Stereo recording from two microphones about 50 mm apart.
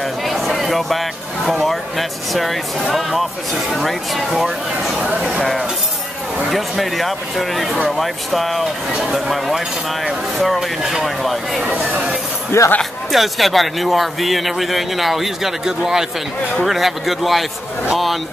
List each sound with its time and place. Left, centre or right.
0.0 s a man's voice: centre
5.0 s speech: centre
6.5 s a man's voice: centre
11.7 s speech: right
12.5 s speech: left
13.1 s a man's voice: centre